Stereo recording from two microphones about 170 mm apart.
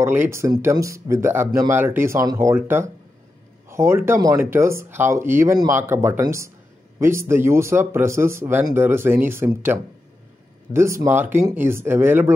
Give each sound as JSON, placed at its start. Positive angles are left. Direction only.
{"t": 0.0, "sound": "speech", "side_deg": -15}